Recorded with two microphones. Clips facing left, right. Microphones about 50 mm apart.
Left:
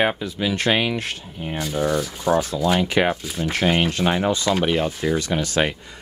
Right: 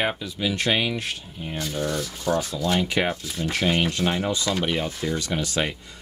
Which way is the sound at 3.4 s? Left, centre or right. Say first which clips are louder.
Left 3 dB; left.